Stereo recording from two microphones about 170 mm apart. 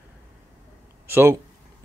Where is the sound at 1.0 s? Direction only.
15° right (ahead or behind).